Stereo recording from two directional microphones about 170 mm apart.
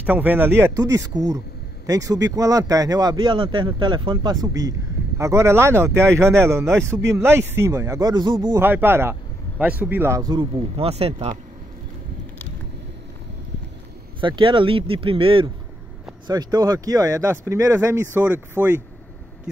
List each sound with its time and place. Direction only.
0.0 s speech: 10° right (ahead or behind); by 8.5 s 25° right (ahead or behind)
8.5 s speech: 10° right (ahead or behind)
10.5 s speech: 35° right (ahead or behind)
14.2 s speech: 30° right (ahead or behind); by 18.8 s 10° right (ahead or behind)